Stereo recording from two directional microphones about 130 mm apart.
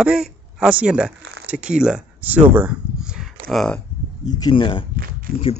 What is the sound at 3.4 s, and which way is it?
Speech, 5° left (ahead or behind).